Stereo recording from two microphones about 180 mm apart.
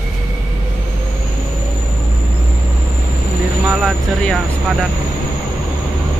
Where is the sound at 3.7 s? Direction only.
Centre (ahead or behind).